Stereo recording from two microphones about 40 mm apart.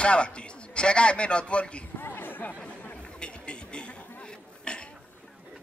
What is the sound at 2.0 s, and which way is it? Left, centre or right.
Chatter, left.